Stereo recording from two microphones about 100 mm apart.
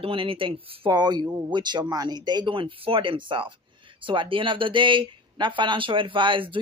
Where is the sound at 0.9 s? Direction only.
45° right (ahead or behind).